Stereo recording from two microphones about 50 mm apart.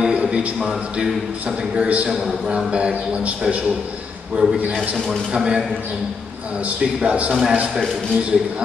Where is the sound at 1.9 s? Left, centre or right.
Right.